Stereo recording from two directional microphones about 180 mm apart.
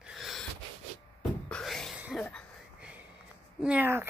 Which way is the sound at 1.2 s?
5° left (ahead or behind).